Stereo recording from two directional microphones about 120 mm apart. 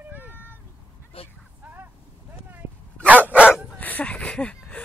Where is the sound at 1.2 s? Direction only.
50° left (ahead or behind).